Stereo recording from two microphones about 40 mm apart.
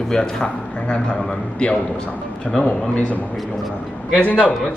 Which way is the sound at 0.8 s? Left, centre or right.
Left.